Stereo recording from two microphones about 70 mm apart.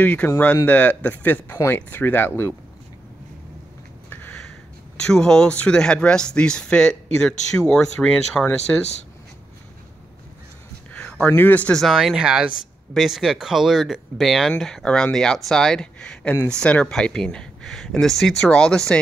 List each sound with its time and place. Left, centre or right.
0.0 s speech: centre
4.9 s speech: centre
10.9 s a sound: centre
11.3 s speech: left
11.9 s speech: centre